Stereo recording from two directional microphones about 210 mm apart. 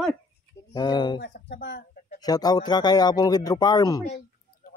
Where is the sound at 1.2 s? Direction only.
55° left (ahead or behind).